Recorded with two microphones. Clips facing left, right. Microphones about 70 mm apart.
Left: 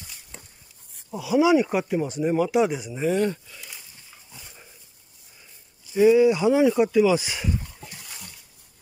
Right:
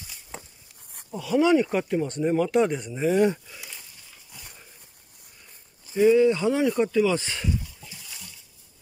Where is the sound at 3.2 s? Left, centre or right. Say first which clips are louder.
Right 3 dB; centre.